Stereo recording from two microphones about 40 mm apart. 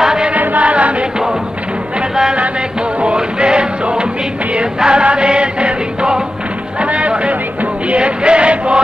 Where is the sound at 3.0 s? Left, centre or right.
Right.